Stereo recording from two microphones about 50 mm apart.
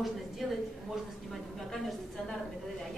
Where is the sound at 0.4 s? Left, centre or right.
Centre.